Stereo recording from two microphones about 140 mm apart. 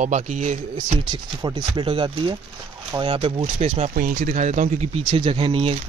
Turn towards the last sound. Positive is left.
turn(degrees=-40)  # may be behind; listen again after turning